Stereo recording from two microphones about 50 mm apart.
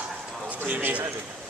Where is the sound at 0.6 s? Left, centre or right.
Right.